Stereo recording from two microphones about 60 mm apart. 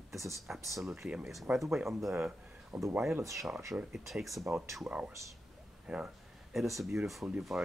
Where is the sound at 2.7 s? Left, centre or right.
Right.